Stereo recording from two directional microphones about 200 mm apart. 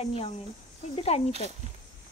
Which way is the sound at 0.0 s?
30° left (ahead or behind).